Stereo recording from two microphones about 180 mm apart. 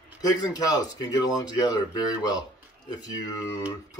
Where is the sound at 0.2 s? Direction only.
20° left (ahead or behind).